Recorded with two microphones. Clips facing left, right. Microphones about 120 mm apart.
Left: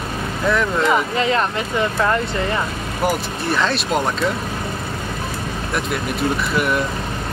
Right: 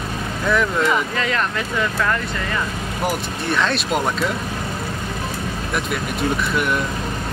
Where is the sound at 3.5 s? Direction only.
Centre (ahead or behind).